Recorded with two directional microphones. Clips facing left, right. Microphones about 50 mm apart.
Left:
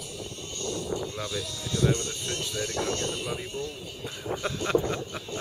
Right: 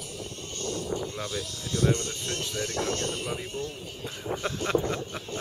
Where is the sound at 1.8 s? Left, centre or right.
Right.